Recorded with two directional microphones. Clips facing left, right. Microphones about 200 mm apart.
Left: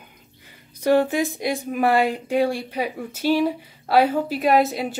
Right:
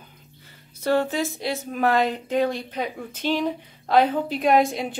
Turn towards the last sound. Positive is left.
turn(degrees=5)  # may be behind; listen again after turning